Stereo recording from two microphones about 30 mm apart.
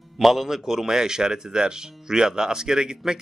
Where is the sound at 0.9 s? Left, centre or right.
Right.